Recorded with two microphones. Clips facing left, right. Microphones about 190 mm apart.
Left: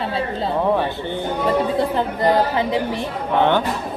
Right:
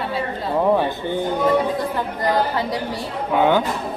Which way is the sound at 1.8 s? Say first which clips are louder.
Left 4 dB; 25° left (ahead or behind).